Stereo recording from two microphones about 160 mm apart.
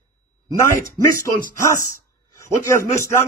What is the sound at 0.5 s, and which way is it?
Speech, 20° left (ahead or behind).